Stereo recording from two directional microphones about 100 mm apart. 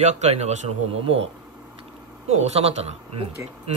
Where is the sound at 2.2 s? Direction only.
90° right.